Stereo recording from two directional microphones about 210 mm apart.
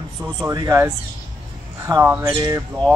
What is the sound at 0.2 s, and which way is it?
A man's voice, 15° right (ahead or behind).